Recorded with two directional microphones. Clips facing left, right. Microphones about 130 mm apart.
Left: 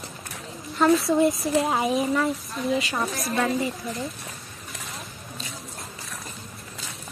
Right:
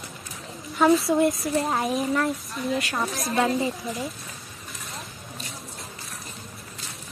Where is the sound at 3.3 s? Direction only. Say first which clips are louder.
Right 2 dB; 15° right (ahead or behind).